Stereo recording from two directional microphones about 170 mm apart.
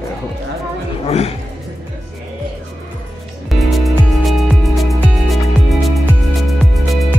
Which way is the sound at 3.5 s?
Centre (ahead or behind).